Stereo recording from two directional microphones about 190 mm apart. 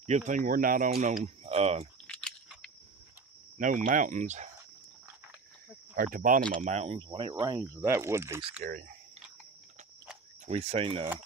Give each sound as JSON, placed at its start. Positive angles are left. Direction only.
{"t": 0.0, "sound": "speech", "side_deg": -40}
{"t": 1.2, "sound": "speech", "side_deg": -35}
{"t": 2.0, "sound": "a sound", "side_deg": 5}
{"t": 3.5, "sound": "speech", "side_deg": -45}
{"t": 5.9, "sound": "speech", "side_deg": -45}
{"t": 6.6, "sound": "speech", "side_deg": -35}
{"t": 8.6, "sound": "speech", "side_deg": -50}
{"t": 10.4, "sound": "speech", "side_deg": -35}